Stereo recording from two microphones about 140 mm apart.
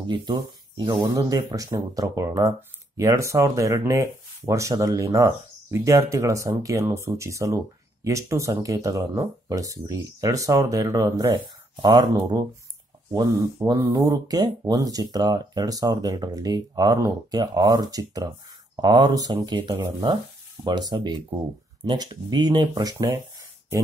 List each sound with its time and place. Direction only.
0.0 s speech: 35° right (ahead or behind)
13.7 s speech: 25° right (ahead or behind)